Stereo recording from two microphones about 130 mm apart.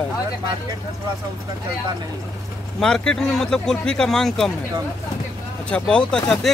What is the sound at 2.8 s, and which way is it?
Speech, 5° left (ahead or behind).